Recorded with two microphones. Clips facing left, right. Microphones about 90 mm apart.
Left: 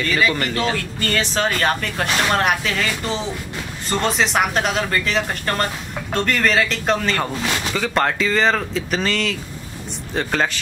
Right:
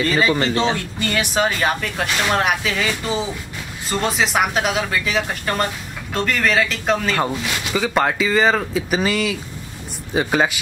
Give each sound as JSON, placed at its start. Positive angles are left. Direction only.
{"t": 0.0, "sound": "speech", "side_deg": -30}